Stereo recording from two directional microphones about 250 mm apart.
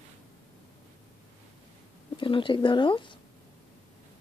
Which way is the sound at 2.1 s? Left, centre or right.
Centre.